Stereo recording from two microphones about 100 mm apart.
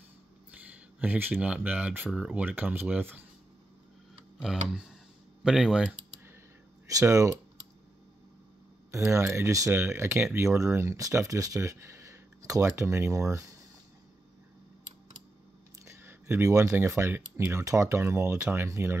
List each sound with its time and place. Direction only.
0.5 s speech: 15° right (ahead or behind)
4.4 s speech: 5° right (ahead or behind)
6.9 s speech: 35° right (ahead or behind)
8.9 s speech: 30° right (ahead or behind)
15.8 s speech: 25° right (ahead or behind)
18.4 s speech: 20° right (ahead or behind)